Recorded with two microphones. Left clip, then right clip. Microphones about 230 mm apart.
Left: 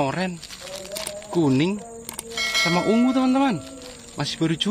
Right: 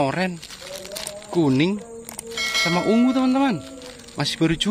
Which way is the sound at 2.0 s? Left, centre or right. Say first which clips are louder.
Even; centre.